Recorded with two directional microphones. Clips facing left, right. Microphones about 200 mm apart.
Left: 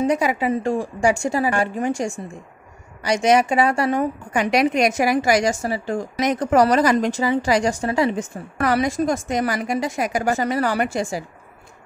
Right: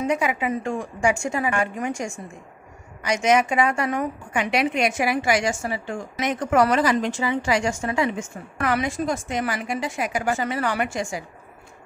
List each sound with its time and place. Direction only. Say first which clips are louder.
0.0 s a woman's voice: left 4 dB; 35° left (ahead or behind)